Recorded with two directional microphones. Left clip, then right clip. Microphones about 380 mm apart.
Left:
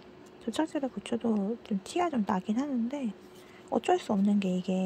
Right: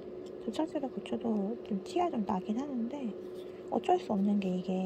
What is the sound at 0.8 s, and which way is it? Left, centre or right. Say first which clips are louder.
Speech: left 3 dB; centre.